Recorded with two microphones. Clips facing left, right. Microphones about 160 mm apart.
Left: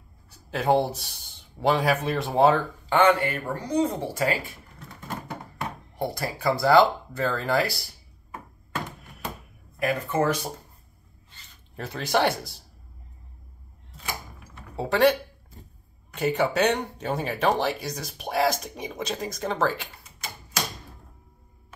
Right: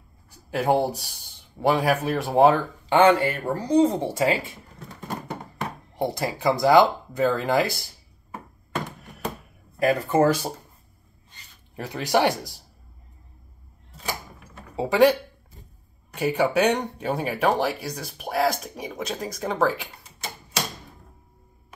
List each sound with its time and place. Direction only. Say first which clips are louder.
0.5 s speech: right 1 dB; 10° right (ahead or behind)
2.9 s speech: right 3 dB; 30° right (ahead or behind)
5.9 s speech: right 4 dB; 20° right (ahead or behind)
9.8 s speech: right 5 dB; 35° right (ahead or behind)
11.7 s speech: right 3 dB; 15° right (ahead or behind)
14.8 s speech: right 3 dB; 10° right (ahead or behind)
16.2 s speech: right 2 dB; 5° right (ahead or behind)